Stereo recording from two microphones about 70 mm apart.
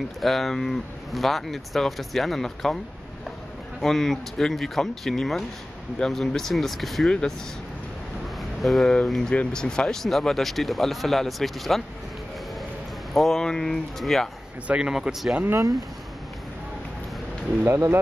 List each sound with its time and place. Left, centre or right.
0.2 s speech: centre
3.8 s speech: centre
7.1 s speech: centre
8.4 s a sound: centre
9.3 s speech: centre
13.1 s speech: centre
14.7 s a man's voice: centre
17.6 s speech: right